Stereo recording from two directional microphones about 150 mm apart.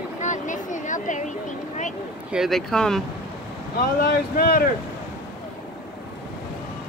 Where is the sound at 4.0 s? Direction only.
80° left.